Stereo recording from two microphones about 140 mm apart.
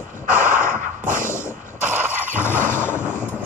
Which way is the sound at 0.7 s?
70° right (ahead or behind).